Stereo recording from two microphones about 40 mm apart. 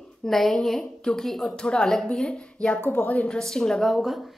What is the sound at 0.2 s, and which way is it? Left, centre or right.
A woman's voice, centre.